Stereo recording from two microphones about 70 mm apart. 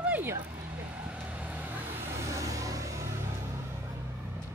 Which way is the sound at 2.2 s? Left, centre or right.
Right.